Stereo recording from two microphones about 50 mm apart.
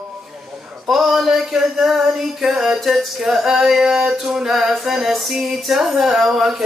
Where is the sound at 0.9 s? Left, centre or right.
Centre.